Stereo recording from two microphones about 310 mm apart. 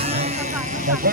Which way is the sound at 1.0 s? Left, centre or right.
Right.